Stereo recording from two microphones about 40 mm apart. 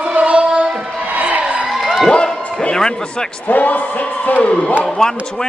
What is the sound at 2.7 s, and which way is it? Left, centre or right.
Speech, centre.